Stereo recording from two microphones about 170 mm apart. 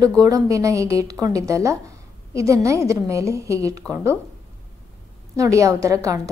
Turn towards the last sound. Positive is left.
turn(degrees=-20)  # may be behind; listen again after turning